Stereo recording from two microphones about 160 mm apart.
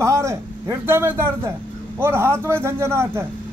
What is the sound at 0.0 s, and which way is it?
A man's voice, 20° right (ahead or behind).